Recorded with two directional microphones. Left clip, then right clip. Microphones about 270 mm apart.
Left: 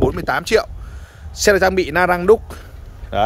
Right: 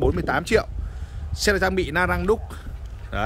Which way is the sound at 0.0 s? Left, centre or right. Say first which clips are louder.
Left 4 dB; centre.